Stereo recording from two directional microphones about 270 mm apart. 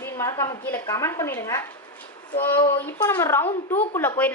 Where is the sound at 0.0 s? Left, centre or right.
Centre.